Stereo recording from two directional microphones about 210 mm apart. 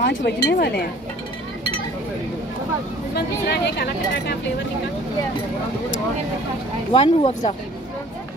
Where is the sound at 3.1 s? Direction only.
50° left (ahead or behind).